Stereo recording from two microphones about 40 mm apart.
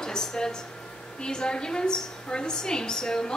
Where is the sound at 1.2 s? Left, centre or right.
Centre.